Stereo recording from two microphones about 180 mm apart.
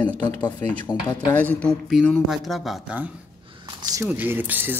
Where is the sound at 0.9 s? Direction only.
20° left (ahead or behind).